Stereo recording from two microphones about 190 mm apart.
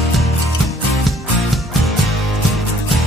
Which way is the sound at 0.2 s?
Centre (ahead or behind).